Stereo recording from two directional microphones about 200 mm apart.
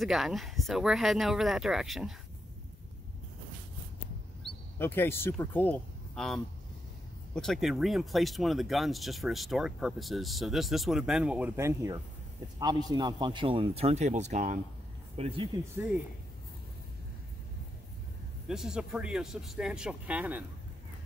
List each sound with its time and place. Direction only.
0.0 s speech: centre (ahead or behind)
4.7 s a man's voice: 10° left (ahead or behind); by 15.4 s 30° right (ahead or behind)
18.5 s speech: 5° right (ahead or behind)